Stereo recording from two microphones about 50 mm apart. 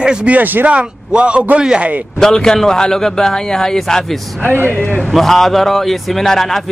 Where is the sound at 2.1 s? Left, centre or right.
Centre.